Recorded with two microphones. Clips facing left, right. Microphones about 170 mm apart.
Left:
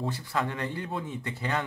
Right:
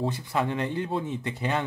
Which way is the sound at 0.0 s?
20° right (ahead or behind).